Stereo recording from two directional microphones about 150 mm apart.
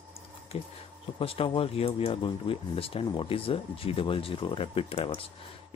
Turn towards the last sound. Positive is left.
turn(degrees=40)  # may be behind; listen again after turning